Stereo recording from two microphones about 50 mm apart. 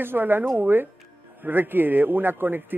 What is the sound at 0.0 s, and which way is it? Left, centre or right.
Speech, right.